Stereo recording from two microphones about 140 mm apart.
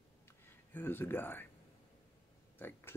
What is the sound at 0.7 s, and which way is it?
Speech, 15° left (ahead or behind).